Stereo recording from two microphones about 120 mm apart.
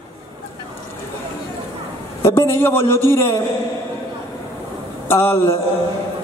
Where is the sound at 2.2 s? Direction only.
20° left (ahead or behind).